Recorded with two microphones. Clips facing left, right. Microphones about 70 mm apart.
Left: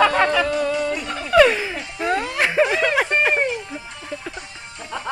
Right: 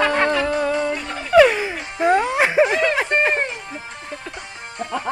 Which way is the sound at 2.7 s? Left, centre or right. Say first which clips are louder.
Right 1 dB; centre.